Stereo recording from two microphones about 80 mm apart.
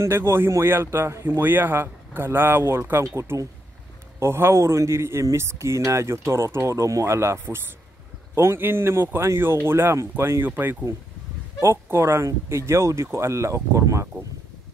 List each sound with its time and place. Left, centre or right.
0.0 s speech: right
10.5 s speech: right
11.6 s speech: right